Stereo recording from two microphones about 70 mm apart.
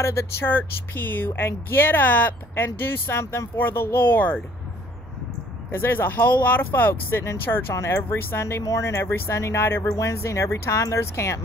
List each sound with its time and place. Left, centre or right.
0.0 s speech: left
5.7 s speech: left
7.7 s speech: left
9.0 s speech: left
9.8 s speech: left